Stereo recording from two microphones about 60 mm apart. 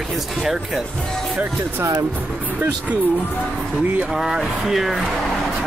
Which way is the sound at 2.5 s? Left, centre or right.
Right.